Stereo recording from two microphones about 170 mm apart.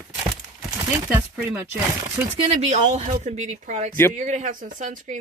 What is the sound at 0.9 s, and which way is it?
Speech, 15° right (ahead or behind).